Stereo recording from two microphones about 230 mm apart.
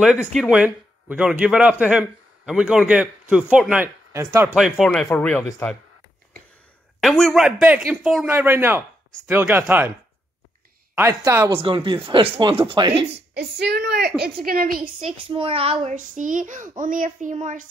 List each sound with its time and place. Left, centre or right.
0.0 s speech: centre
4.6 s speech: centre
7.0 s speech: centre
11.0 s speech: centre
11.6 s speech: right
13.1 s a child's voice: right
15.0 s a child's voice: right